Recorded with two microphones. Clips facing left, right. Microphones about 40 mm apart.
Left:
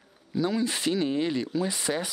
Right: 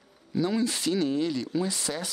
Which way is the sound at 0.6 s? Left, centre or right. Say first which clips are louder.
Even; centre.